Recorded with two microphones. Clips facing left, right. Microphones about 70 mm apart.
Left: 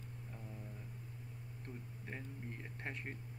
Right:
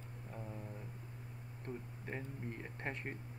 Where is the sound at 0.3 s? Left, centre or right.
Right.